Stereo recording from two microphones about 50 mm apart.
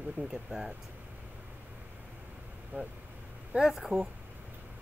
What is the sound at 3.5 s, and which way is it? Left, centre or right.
Speech, right.